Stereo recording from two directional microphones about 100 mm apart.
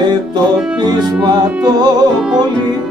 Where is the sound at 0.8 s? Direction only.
45° right (ahead or behind).